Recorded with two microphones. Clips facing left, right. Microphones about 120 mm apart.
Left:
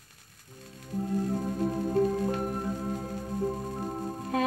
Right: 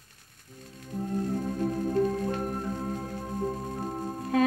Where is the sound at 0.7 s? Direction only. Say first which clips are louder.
Right 1 dB; 25° right (ahead or behind).